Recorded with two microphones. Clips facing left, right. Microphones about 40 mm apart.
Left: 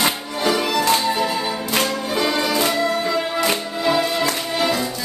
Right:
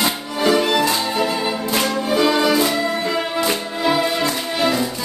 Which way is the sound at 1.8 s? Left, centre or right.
Centre.